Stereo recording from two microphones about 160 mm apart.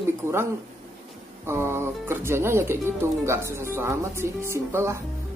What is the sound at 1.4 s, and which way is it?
Speech, 15° right (ahead or behind).